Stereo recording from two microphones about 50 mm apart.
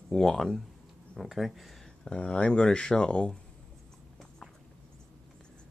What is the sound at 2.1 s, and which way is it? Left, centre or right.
Speech, centre.